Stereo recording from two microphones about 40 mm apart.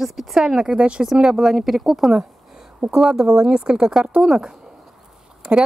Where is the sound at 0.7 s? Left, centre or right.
Right.